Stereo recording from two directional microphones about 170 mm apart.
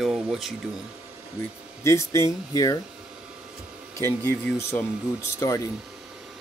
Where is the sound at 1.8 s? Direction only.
15° left (ahead or behind).